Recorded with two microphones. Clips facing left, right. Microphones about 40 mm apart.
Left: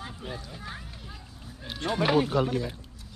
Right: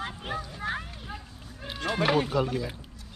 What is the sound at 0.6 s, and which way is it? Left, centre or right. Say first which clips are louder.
Run: right 8 dB; right.